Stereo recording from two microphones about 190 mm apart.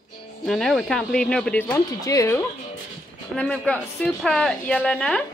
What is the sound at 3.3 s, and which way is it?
Speech, 5° left (ahead or behind).